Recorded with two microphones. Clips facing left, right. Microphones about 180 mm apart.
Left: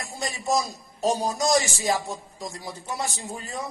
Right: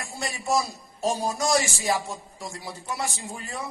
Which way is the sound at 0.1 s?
20° left (ahead or behind).